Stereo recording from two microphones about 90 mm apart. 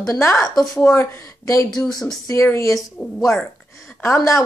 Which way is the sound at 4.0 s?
30° left (ahead or behind).